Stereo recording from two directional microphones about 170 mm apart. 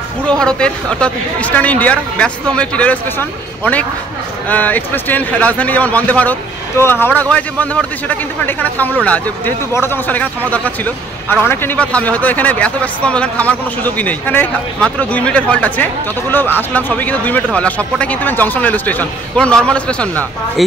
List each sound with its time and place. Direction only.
0.2 s a man's voice: 5° left (ahead or behind)